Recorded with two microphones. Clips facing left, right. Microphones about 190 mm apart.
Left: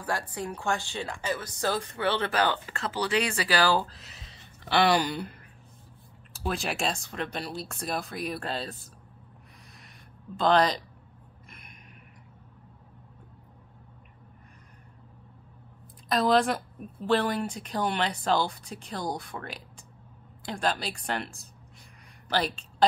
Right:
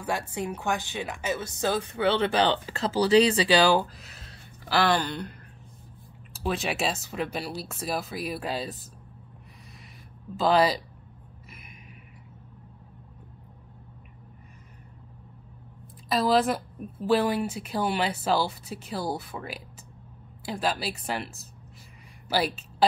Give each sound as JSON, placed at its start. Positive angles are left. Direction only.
{"t": 0.0, "sound": "speech", "side_deg": -25}
{"t": 2.7, "sound": "speech", "side_deg": -40}
{"t": 3.3, "sound": "speech", "side_deg": -20}
{"t": 3.8, "sound": "a sound", "side_deg": -5}
{"t": 4.8, "sound": "speech", "side_deg": 10}
{"t": 6.3, "sound": "a woman's voice", "side_deg": 0}
{"t": 10.3, "sound": "speech", "side_deg": -5}
{"t": 16.1, "sound": "a woman's voice", "side_deg": 0}